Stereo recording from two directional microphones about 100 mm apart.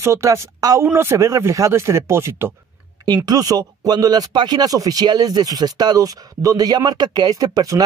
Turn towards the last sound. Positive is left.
turn(degrees=-40)  # may be behind; listen again after turning